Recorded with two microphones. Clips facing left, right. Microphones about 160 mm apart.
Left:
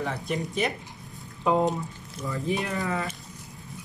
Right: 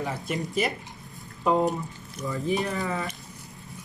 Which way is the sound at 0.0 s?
Centre (ahead or behind).